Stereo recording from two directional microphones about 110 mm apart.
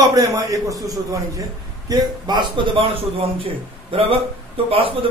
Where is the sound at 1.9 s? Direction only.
40° right (ahead or behind).